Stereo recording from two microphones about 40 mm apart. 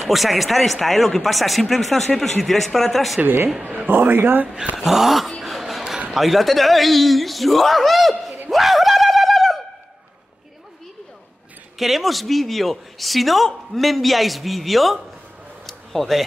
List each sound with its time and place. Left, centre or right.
0.0 s speech: centre
3.8 s speech: right
4.7 s a sound: centre
6.1 s speech: centre
8.5 s bird: centre
11.8 s speech: centre
15.6 s a sound: centre